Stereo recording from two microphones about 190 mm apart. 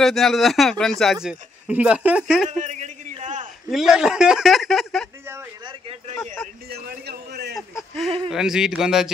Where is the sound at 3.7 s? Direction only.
Centre (ahead or behind).